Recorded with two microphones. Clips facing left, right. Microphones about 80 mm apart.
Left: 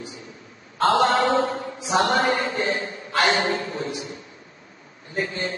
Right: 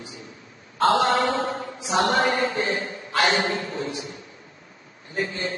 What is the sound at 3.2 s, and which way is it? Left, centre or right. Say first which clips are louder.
Speech: left 1 dB; left.